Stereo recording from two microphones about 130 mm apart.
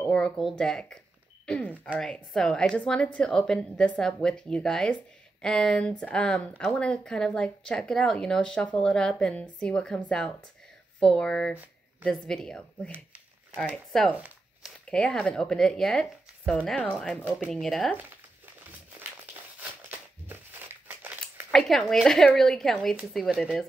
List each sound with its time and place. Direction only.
0.1 s speech: centre (ahead or behind)
12.9 s a sound: 15° right (ahead or behind)
13.9 s speech: centre (ahead or behind)
17.2 s speech: 10° right (ahead or behind)
17.5 s speech: centre (ahead or behind)
20.2 s crumpling: 15° right (ahead or behind)
21.5 s speech: 5° left (ahead or behind)